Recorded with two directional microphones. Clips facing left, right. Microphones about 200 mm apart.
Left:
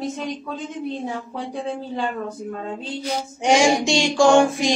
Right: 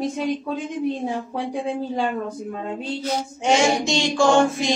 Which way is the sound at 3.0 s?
15° left (ahead or behind).